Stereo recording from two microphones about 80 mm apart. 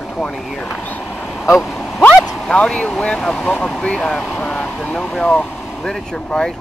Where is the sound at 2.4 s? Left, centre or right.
Centre.